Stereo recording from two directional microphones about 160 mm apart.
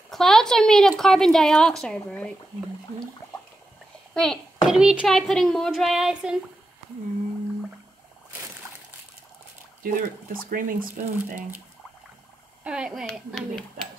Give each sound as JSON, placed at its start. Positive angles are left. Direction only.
{"t": 0.1, "sound": "a woman's voice", "side_deg": 0}
{"t": 4.1, "sound": "a child's voice", "side_deg": 0}
{"t": 9.9, "sound": "speech", "side_deg": -60}
{"t": 12.6, "sound": "a woman's voice", "side_deg": -5}